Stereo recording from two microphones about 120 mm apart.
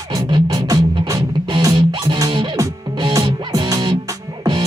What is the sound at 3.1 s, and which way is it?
Music, 30° right (ahead or behind).